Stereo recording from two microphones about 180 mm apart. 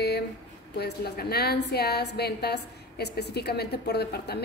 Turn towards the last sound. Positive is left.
turn(degrees=65)  # may be behind; listen again after turning